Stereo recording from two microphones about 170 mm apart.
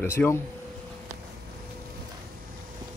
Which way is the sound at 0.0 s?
15° left (ahead or behind).